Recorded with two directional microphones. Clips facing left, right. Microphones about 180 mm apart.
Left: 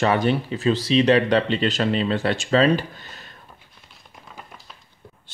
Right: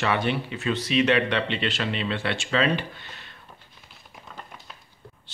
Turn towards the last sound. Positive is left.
turn(degrees=0)  # may be behind; listen again after turning